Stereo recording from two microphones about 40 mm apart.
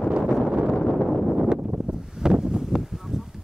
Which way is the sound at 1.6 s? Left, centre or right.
Right.